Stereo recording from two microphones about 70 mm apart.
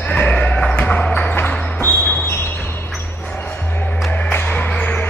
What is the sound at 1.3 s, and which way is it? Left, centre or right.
Music, left.